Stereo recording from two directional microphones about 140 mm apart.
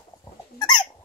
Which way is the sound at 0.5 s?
30° left (ahead or behind).